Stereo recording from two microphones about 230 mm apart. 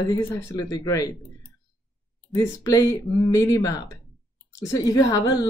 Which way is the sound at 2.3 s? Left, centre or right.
Centre.